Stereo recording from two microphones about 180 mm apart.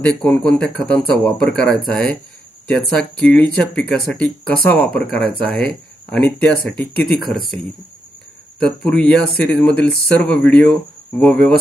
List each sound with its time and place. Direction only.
0.0 s speech: 5° left (ahead or behind)
8.5 s speech: 5° left (ahead or behind)